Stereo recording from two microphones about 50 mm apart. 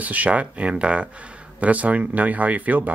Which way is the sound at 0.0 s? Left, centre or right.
Right.